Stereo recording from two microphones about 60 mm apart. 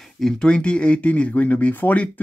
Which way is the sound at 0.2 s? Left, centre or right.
Centre.